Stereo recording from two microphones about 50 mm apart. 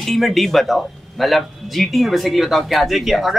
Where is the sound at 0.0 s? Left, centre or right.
Centre.